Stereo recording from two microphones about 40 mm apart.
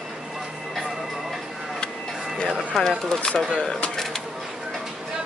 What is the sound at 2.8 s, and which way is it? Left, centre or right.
Speech, centre.